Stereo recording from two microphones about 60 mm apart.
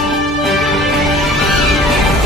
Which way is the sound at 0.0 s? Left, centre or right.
Centre.